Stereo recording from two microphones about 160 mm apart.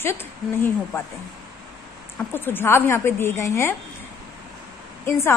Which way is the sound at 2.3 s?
15° left (ahead or behind).